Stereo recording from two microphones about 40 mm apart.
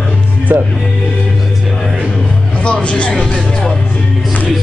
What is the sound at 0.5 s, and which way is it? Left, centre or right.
Speech, right.